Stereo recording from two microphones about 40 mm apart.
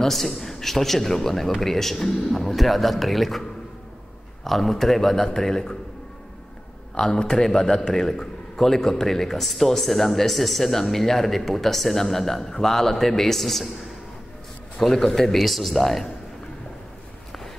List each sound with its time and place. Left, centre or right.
0.0 s a man's voice: centre
4.5 s a man's voice: centre
7.0 s a man's voice: centre
14.8 s a man's voice: centre